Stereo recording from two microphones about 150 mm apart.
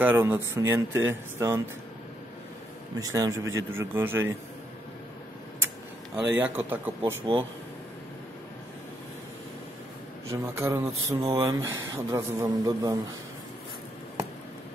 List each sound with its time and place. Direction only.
0.0 s speech: 15° right (ahead or behind)
3.0 s a man's voice: 25° right (ahead or behind)
6.1 s speech: 10° right (ahead or behind)
7.3 s speech: 35° right (ahead or behind)
10.3 s a man's voice: 20° right (ahead or behind)